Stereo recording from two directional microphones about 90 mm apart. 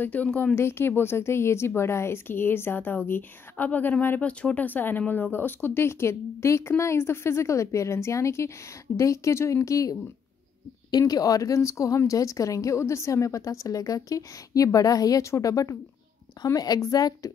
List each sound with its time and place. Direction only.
0.0 s a woman's voice: 20° left (ahead or behind)
0.6 s a woman's voice: 25° left (ahead or behind); by 17.3 s 40° left (ahead or behind)